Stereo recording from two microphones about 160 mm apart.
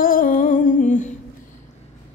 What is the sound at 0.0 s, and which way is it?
Humming, 60° left (ahead or behind).